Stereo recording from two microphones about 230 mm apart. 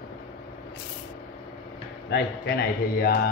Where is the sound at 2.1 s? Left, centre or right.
Left.